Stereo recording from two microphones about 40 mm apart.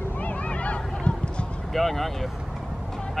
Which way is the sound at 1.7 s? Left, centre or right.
Centre.